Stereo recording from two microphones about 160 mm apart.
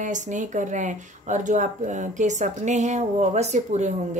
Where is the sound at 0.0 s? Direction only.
50° right (ahead or behind).